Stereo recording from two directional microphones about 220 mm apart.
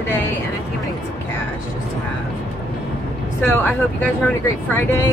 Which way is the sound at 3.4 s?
5° left (ahead or behind).